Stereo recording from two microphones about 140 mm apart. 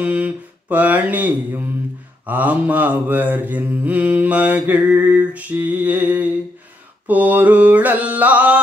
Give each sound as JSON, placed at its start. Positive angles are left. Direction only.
{"t": 0.0, "sound": "mantra", "side_deg": -10}